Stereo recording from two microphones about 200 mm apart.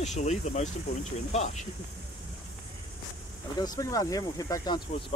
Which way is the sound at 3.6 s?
15° left (ahead or behind).